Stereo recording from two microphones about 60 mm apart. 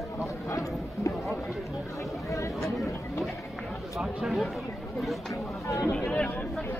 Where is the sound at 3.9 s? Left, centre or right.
Centre.